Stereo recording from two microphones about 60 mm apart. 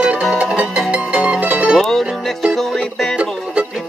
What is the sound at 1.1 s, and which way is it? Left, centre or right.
Music, centre.